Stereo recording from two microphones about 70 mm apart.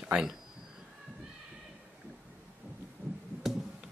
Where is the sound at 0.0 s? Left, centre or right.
Centre.